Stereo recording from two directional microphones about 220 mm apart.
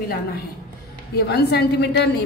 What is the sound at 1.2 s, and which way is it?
Speech, 50° left (ahead or behind).